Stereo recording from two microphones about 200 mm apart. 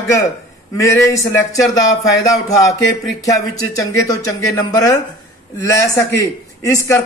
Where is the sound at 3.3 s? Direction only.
15° left (ahead or behind).